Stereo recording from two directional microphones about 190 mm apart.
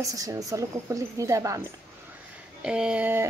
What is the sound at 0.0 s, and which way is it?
A woman's voice, 15° right (ahead or behind).